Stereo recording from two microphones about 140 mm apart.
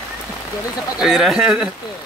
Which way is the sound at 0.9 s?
Centre (ahead or behind).